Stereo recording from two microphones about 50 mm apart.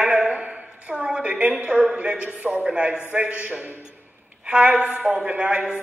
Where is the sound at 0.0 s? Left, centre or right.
Right.